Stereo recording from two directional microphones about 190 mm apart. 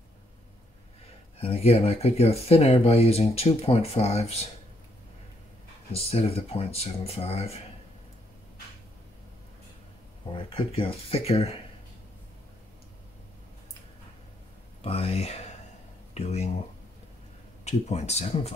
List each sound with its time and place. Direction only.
1.4 s speech: 30° left (ahead or behind)
5.9 s speech: 30° left (ahead or behind)
10.3 s speech: 30° left (ahead or behind)
14.8 s speech: 30° left (ahead or behind)
17.6 s speech: 35° left (ahead or behind)